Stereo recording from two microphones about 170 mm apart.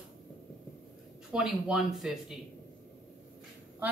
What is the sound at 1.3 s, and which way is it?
Speech, 5° right (ahead or behind).